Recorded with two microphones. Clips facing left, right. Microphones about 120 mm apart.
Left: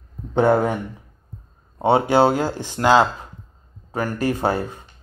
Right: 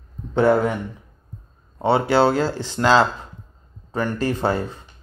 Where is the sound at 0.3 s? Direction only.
15° left (ahead or behind).